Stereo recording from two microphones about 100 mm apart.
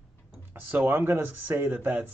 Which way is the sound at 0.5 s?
20° right (ahead or behind).